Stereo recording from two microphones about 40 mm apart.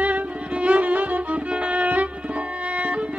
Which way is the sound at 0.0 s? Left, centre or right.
Right.